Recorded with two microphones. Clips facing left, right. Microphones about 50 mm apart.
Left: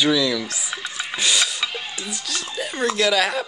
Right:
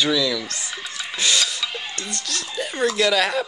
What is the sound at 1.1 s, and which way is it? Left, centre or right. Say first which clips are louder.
Music: even; centre.